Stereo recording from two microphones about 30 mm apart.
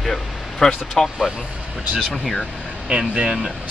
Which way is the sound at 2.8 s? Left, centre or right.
Right.